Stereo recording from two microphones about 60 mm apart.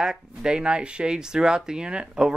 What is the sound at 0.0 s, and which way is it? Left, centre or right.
Speech, centre.